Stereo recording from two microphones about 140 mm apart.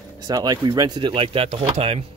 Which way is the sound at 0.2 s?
30° right (ahead or behind).